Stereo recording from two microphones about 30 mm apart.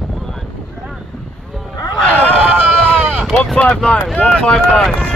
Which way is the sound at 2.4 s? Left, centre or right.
Right.